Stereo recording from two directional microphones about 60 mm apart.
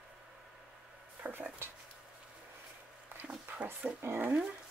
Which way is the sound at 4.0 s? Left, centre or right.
Right.